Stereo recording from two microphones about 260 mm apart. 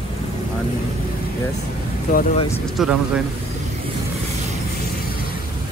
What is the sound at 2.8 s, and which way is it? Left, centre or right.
Speech, centre.